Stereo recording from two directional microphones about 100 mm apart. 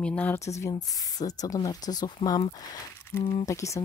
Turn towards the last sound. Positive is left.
turn(degrees=30)  # may be behind; listen again after turning